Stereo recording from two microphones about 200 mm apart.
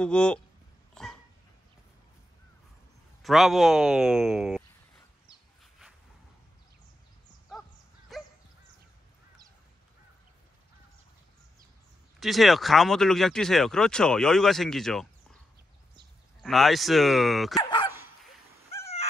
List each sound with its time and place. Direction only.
0.0 s speech: 5° left (ahead or behind)
1.0 s dog: 5° left (ahead or behind)
3.2 s speech: centre (ahead or behind)
5.6 s a sound: centre (ahead or behind)
8.1 s goose: centre (ahead or behind)
12.2 s speech: centre (ahead or behind)
16.4 s speech: centre (ahead or behind)
17.6 s dog: 20° left (ahead or behind)